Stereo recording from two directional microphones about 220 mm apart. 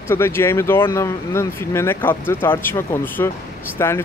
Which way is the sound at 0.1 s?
10° left (ahead or behind).